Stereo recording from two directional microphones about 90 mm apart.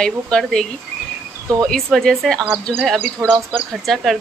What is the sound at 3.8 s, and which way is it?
Speech, centre (ahead or behind).